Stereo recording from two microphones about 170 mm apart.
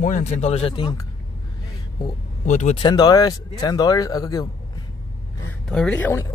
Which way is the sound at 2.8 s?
25° left (ahead or behind).